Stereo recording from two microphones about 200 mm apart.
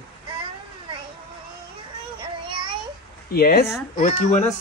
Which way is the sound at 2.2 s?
25° right (ahead or behind).